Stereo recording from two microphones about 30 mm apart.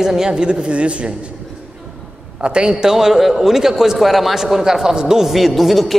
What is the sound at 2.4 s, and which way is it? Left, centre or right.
Speech, right.